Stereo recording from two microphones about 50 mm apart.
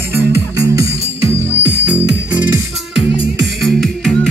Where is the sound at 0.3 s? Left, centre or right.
Right.